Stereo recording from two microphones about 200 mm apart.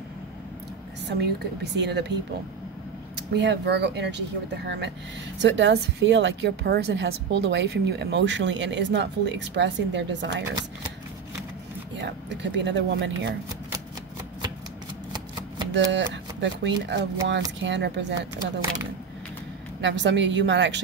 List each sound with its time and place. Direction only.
1.0 s a woman's voice: 60° right (ahead or behind)
3.2 s a woman's voice: 60° right (ahead or behind)
12.0 s a woman's voice: 60° right (ahead or behind)
15.7 s a woman's voice: 65° right (ahead or behind)
19.8 s a woman's voice: 65° right (ahead or behind)